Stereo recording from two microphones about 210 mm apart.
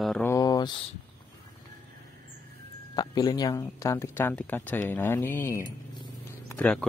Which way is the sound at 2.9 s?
20° left (ahead or behind).